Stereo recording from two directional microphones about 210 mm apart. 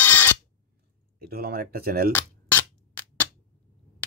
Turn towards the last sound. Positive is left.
turn(degrees=10)  # may be behind; listen again after turning